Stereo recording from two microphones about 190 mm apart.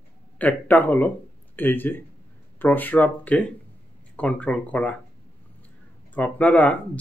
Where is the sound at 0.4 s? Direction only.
10° left (ahead or behind).